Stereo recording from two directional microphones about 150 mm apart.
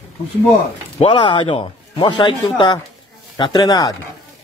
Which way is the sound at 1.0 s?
35° left (ahead or behind).